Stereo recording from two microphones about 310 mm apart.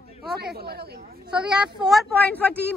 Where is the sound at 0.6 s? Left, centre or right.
Right.